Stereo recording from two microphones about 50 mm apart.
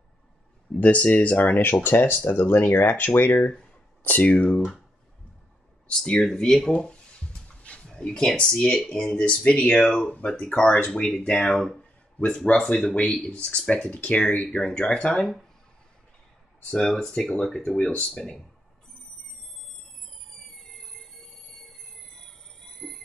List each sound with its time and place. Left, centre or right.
0.7 s speech: left
1.6 s speech: left
3.3 s speech: centre
4.0 s speech: left
5.9 s speech: centre
6.7 s a sound: centre
8.9 s speech: left
11.5 s speech: centre
11.8 s a sound: left
12.9 s speech: left
16.6 s speech: centre
20.4 s train: centre
21.7 s a sound: centre